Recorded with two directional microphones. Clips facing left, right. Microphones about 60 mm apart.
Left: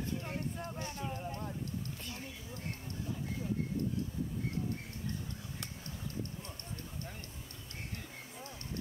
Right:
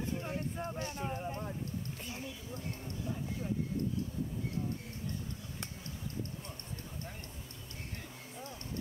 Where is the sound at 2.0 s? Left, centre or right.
Right.